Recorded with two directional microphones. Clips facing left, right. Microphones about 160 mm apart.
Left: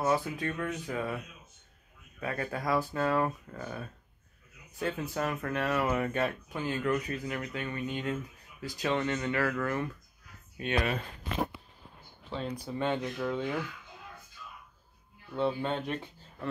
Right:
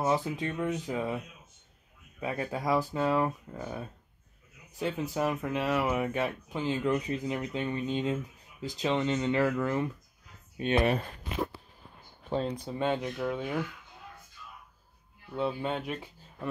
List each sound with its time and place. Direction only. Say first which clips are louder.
0.0 s speech: right 1 dB; 20° right (ahead or behind)
12.4 s speech: left 3 dB; 20° right (ahead or behind)
15.3 s speech: left 1 dB; 5° right (ahead or behind)